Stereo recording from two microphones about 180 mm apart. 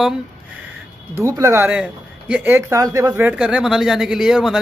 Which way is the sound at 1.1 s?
15° right (ahead or behind).